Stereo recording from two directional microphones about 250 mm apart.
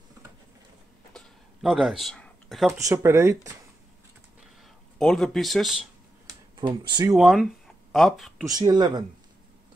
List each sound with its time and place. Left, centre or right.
1.1 s a sound: centre
2.8 s speech: centre
4.9 s speech: centre
6.2 s a sound: centre
7.2 s speech: centre
8.5 s speech: centre